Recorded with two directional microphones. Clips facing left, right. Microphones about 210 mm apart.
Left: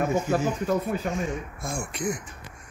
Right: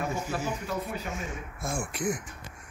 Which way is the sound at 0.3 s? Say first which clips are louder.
Left 8 dB; 50° left (ahead or behind).